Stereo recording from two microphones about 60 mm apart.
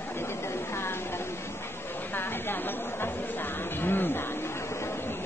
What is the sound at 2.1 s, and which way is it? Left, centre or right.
Chatter, left.